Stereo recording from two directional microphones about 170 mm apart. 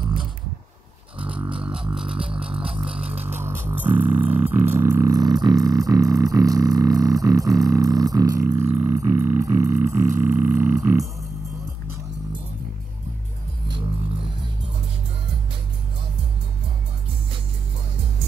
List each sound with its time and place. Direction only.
1.2 s beatboxing: 10° right (ahead or behind)
1.6 s music: 5° right (ahead or behind)
2.2 s didgeridoo: 5° right (ahead or behind)
3.3 s music: 15° right (ahead or behind)